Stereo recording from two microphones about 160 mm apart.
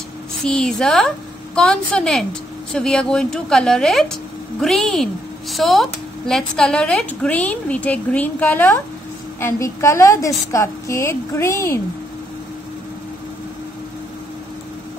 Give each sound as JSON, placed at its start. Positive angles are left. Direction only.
{"t": 0.4, "sound": "a woman's voice", "side_deg": 5}